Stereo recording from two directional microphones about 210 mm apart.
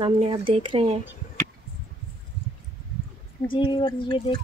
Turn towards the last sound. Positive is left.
turn(degrees=20)  # may be behind; listen again after turning